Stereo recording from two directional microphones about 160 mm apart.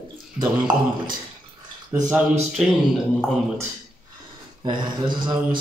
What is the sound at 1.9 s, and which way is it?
Speech, 15° right (ahead or behind).